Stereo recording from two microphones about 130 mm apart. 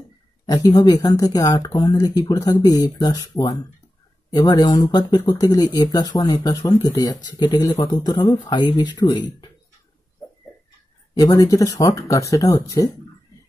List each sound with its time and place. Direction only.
0.5 s speech: 30° left (ahead or behind)
11.1 s speech: 25° left (ahead or behind)